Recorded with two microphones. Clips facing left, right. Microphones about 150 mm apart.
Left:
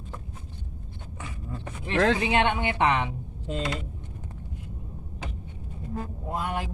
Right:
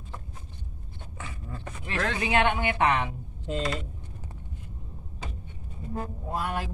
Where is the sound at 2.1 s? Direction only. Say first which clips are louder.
Left 1 dB; 20° left (ahead or behind).